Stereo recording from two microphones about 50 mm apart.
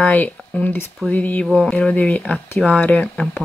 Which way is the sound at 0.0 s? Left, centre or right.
Left.